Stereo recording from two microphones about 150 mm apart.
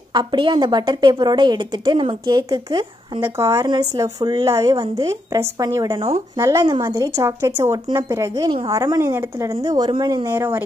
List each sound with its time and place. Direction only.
0.1 s speech: 30° right (ahead or behind)